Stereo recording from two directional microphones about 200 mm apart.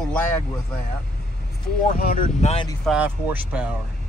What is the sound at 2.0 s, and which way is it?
Speech, 45° left (ahead or behind).